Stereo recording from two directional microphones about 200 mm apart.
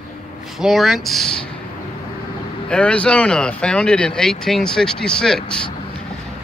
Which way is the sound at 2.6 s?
5° left (ahead or behind).